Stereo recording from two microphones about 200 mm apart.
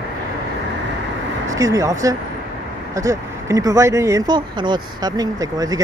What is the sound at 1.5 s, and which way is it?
Speech, 15° right (ahead or behind).